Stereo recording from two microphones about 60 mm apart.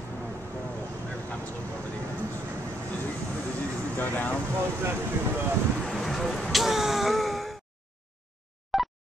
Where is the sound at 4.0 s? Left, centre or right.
Left.